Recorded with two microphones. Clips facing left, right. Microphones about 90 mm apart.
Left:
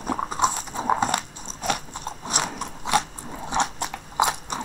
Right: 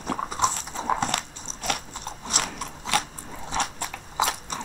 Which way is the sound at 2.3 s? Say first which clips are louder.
Left 2 dB; 10° left (ahead or behind).